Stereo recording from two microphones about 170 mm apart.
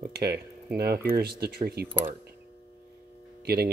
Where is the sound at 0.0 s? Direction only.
65° right (ahead or behind).